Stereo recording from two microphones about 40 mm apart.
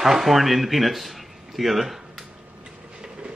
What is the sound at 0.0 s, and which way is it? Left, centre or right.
Speech, centre.